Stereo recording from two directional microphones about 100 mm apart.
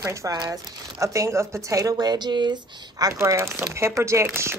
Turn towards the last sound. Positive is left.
turn(degrees=-25)  # may be behind; listen again after turning